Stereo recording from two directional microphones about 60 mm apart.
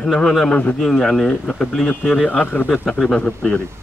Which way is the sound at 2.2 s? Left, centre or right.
Left.